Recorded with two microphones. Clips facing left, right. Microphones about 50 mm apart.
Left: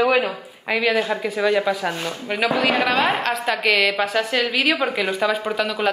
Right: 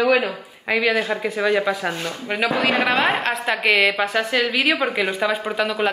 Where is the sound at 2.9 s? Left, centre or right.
Right.